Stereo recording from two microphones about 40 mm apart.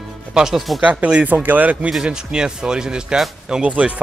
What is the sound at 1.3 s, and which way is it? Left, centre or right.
Speech, right.